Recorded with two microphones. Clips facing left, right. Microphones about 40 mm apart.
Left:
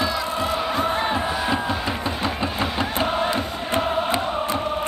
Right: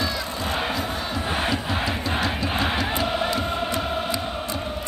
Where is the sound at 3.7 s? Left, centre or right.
Left.